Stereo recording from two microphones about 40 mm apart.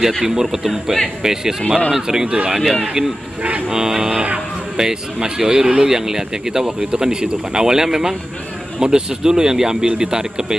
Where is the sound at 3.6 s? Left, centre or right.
Centre.